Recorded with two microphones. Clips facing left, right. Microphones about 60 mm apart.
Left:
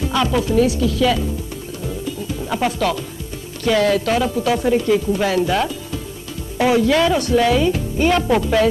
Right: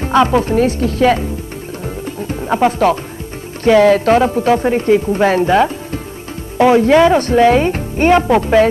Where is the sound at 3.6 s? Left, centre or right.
Right.